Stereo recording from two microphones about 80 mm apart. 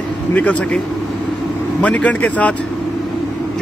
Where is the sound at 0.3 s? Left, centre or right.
Centre.